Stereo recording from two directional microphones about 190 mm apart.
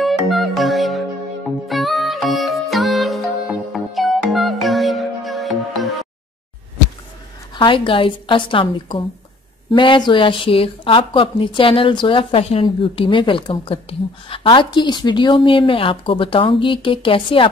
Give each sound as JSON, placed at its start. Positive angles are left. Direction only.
{"t": 0.0, "sound": "music", "side_deg": 0}
{"t": 7.5, "sound": "a woman's voice", "side_deg": 25}